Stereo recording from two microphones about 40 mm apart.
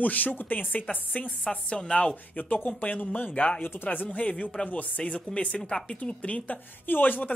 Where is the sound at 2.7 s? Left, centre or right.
Left.